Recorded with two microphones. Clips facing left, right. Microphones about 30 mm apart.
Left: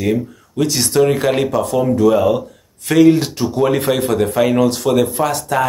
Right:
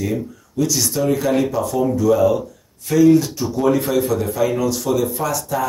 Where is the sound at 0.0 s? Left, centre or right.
Left.